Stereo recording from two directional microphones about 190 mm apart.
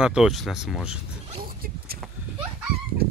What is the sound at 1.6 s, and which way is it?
Vehicle, 50° right (ahead or behind).